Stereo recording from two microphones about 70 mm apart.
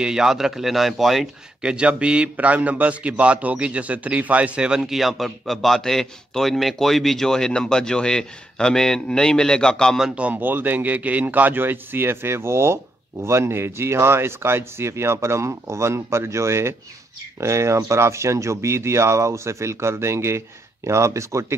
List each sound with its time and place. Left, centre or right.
0.0 s a man's voice: centre
1.6 s a man's voice: centre
10.1 s speech: right